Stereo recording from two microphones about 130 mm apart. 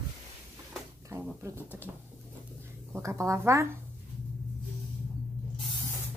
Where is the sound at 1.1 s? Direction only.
20° right (ahead or behind).